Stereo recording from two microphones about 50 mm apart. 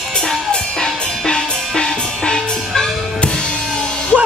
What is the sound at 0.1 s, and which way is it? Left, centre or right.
Music, centre.